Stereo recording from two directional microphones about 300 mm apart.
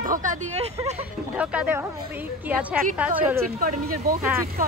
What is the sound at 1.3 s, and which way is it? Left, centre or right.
A woman's voice, centre.